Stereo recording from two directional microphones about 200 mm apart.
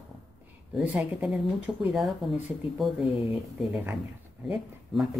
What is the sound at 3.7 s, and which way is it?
Speech, 10° right (ahead or behind).